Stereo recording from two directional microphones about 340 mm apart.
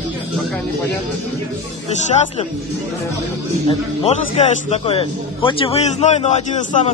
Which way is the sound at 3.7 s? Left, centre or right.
Centre.